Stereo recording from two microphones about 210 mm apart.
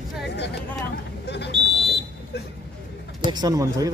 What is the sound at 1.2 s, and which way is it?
Buzzer, 55° left (ahead or behind).